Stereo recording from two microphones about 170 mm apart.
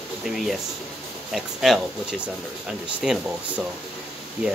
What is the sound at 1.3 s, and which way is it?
Speech, centre (ahead or behind).